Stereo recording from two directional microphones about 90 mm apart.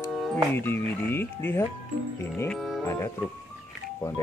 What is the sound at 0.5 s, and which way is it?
Speech, 25° left (ahead or behind).